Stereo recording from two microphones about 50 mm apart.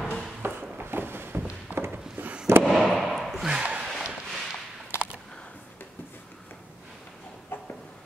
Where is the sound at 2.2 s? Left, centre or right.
Right.